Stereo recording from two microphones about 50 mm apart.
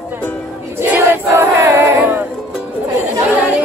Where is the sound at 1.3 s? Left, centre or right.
Right.